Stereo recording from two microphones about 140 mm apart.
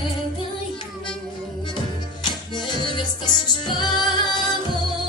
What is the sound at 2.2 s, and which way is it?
Music, 30° left (ahead or behind).